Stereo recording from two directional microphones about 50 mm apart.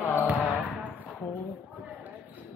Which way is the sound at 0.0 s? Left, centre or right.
Left.